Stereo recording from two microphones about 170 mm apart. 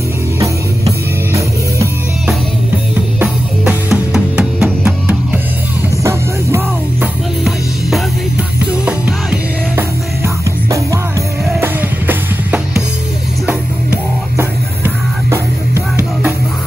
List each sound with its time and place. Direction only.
3.2 s music: 5° right (ahead or behind)
8.8 s music: 10° right (ahead or behind)
14.8 s music: 15° right (ahead or behind)